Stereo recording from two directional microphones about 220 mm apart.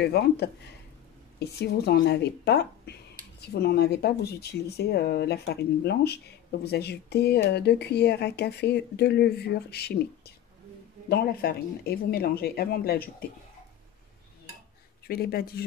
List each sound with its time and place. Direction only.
0.0 s speech: 45° left (ahead or behind)
15.0 s speech: 45° left (ahead or behind)